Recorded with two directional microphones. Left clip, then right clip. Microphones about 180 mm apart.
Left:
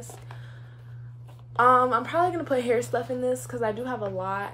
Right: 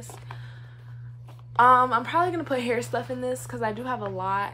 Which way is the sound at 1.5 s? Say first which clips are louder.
Right 1 dB; 15° right (ahead or behind).